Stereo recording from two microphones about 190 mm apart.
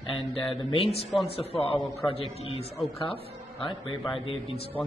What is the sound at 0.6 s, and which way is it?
A man's voice, 30° left (ahead or behind).